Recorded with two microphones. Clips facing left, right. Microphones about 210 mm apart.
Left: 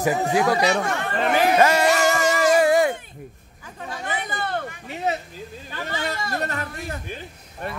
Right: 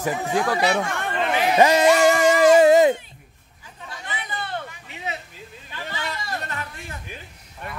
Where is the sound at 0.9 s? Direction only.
45° left (ahead or behind).